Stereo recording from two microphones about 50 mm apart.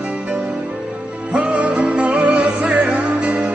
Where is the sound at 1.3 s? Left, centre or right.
Right.